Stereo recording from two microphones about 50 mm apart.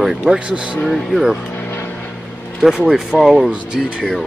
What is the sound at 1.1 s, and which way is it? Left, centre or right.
Speech, centre.